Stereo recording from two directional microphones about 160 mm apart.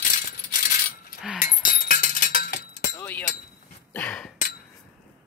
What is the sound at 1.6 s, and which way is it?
Chink, 60° left (ahead or behind).